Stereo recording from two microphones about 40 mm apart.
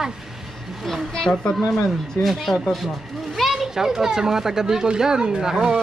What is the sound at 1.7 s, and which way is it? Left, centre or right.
Speech, centre.